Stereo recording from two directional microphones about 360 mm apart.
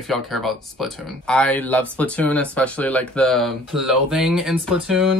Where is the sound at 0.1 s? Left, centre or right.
Centre.